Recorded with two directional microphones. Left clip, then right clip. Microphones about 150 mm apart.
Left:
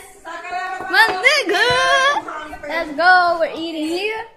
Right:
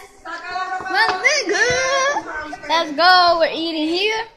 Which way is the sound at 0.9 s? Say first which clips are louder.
Left 3 dB; 15° left (ahead or behind).